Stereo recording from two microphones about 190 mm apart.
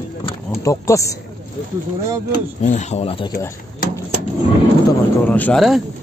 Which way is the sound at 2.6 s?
35° left (ahead or behind).